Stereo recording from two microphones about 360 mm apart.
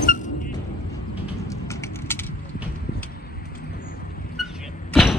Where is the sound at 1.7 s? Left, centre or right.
Centre.